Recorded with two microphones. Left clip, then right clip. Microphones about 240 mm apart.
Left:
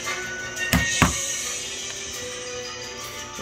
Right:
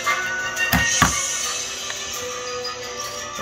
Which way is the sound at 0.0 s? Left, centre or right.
Left.